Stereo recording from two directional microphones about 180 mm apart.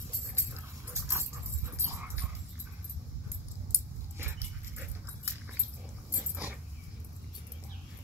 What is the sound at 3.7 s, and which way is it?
Dog, 10° right (ahead or behind).